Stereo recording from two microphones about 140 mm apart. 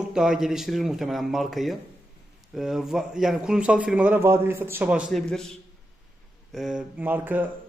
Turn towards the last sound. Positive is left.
turn(degrees=-15)  # may be behind; listen again after turning